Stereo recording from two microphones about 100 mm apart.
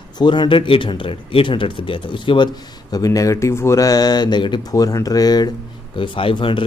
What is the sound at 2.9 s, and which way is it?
Speech, 35° left (ahead or behind).